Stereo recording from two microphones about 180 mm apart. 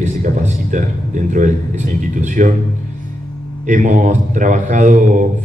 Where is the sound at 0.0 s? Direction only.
45° right (ahead or behind).